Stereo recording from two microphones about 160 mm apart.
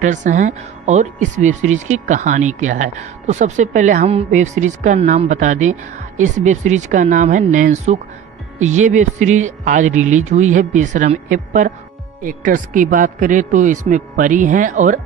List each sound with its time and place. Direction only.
0.0 s speech: 50° right (ahead or behind)